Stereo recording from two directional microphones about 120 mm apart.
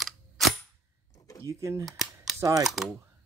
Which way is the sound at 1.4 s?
25° right (ahead or behind).